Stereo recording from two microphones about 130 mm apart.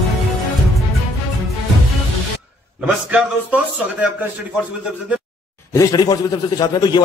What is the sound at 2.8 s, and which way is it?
Speech, 10° right (ahead or behind).